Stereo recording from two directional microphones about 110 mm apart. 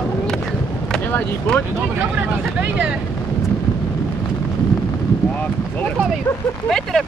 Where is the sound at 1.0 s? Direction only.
15° left (ahead or behind).